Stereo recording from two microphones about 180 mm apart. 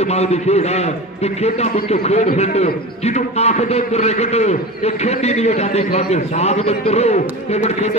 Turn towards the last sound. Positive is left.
turn(degrees=35)  # may be behind; listen again after turning